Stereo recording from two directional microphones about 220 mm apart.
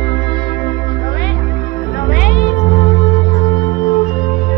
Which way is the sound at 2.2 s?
40° left (ahead or behind).